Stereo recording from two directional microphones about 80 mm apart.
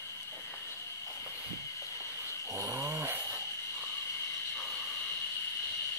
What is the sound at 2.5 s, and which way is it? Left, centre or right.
Snoring, right.